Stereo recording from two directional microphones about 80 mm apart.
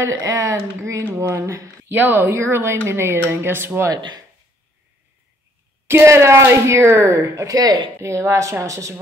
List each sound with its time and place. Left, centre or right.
0.0 s speech: right
3.9 s speech: right
5.9 s speech: right
8.0 s speech: right